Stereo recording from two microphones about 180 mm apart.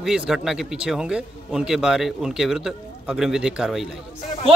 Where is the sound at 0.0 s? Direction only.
Centre (ahead or behind).